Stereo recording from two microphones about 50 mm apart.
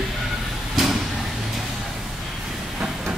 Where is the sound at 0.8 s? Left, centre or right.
Centre.